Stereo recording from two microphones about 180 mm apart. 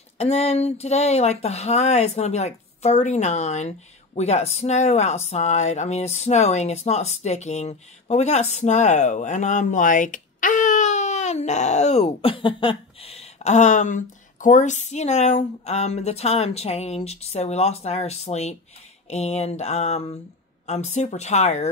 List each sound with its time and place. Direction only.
0.2 s speech: 35° left (ahead or behind)